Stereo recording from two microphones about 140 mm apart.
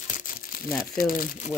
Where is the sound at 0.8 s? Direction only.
90° left; by 1.5 s 75° left (ahead or behind).